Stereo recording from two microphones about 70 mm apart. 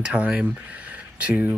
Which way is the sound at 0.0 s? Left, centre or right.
Centre.